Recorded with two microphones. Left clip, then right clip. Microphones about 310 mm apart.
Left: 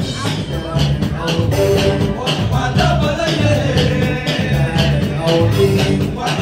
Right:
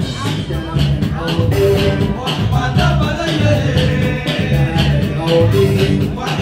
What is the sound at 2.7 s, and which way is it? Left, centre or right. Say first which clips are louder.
Music: left 3 dB; centre.